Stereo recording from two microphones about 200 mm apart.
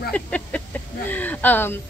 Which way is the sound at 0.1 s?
5° left (ahead or behind).